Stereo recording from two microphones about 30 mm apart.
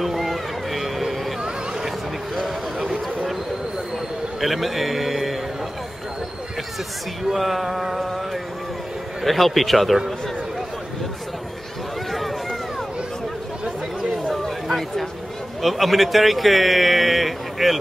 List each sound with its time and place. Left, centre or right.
0.0 s a sound: centre
1.4 s a sound: right
4.4 s a man's voice: centre
7.2 s a man's voice: centre
9.2 s a man's voice: centre
12.1 s run: centre
15.6 s speech: centre